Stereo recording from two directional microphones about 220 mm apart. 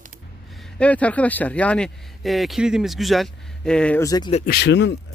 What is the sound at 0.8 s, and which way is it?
Speech, 5° left (ahead or behind).